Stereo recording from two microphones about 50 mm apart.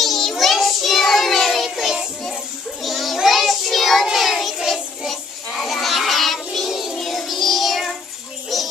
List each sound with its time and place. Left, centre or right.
0.0 s child singing: centre
2.8 s children playing: centre
3.3 s child singing: centre
4.0 s music: centre
5.0 s child singing: centre
6.7 s music: centre
7.0 s music: centre